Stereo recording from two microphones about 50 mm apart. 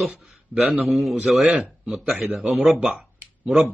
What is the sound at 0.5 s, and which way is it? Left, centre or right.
Speech, right.